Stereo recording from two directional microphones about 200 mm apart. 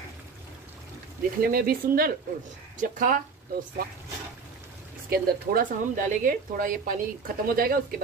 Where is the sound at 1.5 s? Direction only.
45° right (ahead or behind).